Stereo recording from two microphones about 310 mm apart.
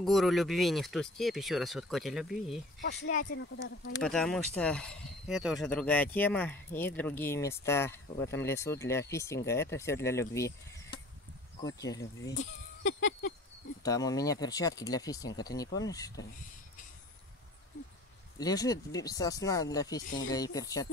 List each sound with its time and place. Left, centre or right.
0.0 s speech: centre
3.1 s speech: left
3.9 s speech: centre
10.3 s a sound: centre
11.6 s speech: centre
12.4 s speech: left
13.8 s speech: centre
18.4 s speech: centre